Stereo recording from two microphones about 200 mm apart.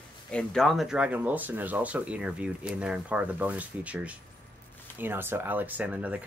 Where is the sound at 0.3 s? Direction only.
5° left (ahead or behind).